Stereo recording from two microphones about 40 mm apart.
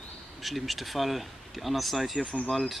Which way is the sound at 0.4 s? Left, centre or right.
Centre.